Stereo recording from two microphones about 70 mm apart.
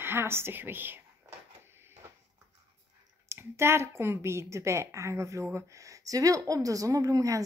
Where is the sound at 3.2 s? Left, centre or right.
Right.